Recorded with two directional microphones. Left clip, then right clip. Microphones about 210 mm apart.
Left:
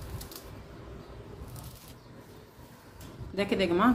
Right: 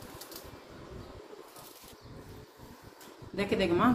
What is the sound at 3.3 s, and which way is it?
Speech, 40° left (ahead or behind).